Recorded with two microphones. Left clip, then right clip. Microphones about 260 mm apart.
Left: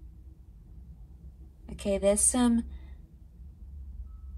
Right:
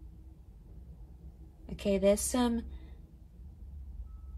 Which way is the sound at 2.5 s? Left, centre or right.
Left.